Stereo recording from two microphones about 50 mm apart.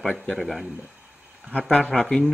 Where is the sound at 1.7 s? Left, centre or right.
Centre.